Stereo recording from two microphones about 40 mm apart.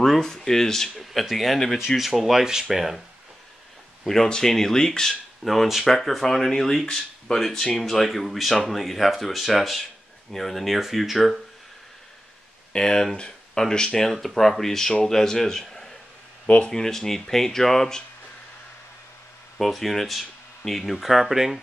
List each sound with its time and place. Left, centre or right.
0.0 s a man's voice: centre
4.3 s a man's voice: centre
12.7 s speech: centre
14.1 s a man's voice: centre
16.4 s speech: left
16.7 s a man's voice: centre
19.6 s speech: centre